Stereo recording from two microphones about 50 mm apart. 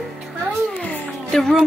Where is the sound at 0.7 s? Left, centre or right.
Left.